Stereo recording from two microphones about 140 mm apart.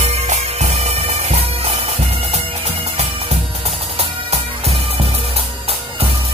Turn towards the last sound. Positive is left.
turn(degrees=-45)  # may be behind; listen again after turning